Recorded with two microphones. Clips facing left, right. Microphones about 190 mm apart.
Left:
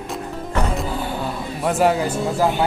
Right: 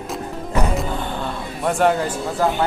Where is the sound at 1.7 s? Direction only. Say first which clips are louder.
Even; 5° left (ahead or behind).